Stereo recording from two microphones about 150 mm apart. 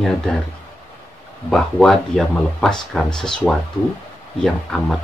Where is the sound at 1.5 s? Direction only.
Centre (ahead or behind).